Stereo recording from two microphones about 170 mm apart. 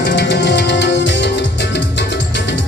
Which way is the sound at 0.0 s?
85° left.